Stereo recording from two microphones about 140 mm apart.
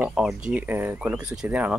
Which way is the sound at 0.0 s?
5° right (ahead or behind).